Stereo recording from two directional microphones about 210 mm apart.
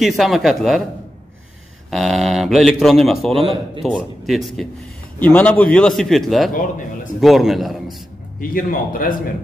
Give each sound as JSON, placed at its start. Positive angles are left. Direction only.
{"t": 0.0, "sound": "a man's voice", "side_deg": 0}
{"t": 1.9, "sound": "a man's voice", "side_deg": 0}
{"t": 3.3, "sound": "a man's voice", "side_deg": -25}
{"t": 3.8, "sound": "a man's voice", "side_deg": 0}
{"t": 8.4, "sound": "speech", "side_deg": 40}